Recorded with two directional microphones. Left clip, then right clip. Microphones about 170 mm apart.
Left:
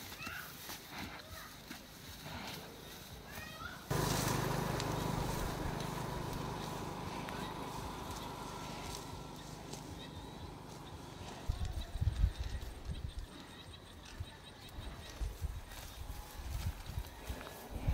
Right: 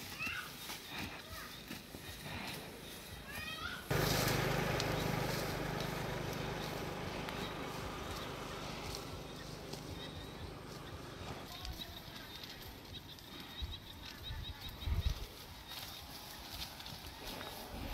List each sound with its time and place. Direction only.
3.9 s vehicle: 90° left